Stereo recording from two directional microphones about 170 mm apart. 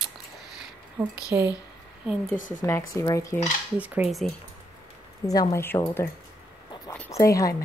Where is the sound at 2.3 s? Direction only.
50° left (ahead or behind).